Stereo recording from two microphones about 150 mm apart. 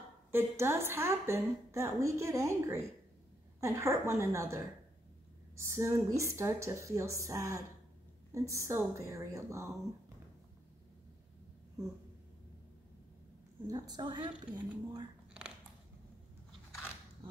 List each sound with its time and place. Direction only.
0.3 s a woman's voice: 15° right (ahead or behind)
5.7 s a woman's voice: 20° right (ahead or behind)
13.7 s a woman's voice: 25° right (ahead or behind)